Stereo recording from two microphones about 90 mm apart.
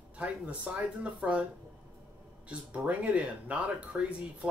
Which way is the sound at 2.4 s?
15° right (ahead or behind).